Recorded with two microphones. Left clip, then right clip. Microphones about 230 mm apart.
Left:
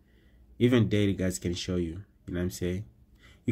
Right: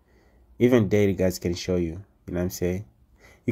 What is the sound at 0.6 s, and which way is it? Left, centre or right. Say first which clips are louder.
Speech: right 6 dB; centre.